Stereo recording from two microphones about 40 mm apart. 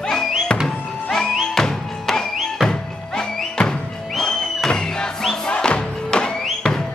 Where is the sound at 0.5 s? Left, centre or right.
Left.